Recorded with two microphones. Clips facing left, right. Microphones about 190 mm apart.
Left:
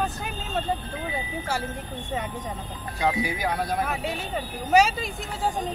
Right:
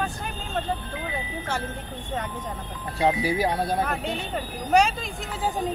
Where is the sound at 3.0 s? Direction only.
30° right (ahead or behind).